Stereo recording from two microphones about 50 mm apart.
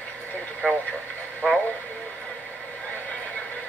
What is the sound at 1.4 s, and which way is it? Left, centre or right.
Radio, centre.